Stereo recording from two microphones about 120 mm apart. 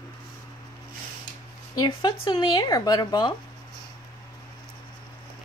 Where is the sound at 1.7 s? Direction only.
40° left (ahead or behind).